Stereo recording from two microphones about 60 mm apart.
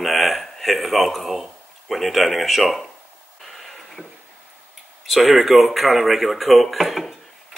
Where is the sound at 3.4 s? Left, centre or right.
Centre.